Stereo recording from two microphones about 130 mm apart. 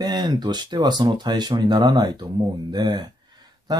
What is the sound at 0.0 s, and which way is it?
Speech, 30° right (ahead or behind).